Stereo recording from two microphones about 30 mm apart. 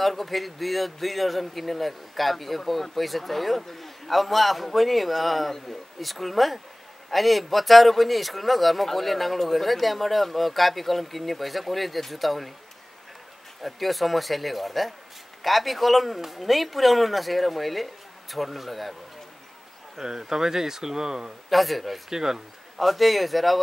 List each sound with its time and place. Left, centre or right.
0.0 s a man's voice: centre
13.6 s a man's voice: centre
20.0 s speech: centre
21.5 s a man's voice: centre
22.1 s speech: centre
22.8 s a man's voice: centre